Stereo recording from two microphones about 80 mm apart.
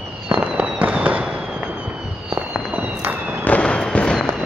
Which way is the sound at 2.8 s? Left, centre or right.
Right.